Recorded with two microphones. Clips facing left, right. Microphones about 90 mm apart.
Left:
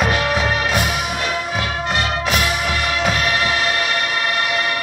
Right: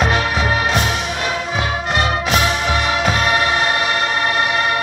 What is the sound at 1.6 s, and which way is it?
Music, 20° right (ahead or behind).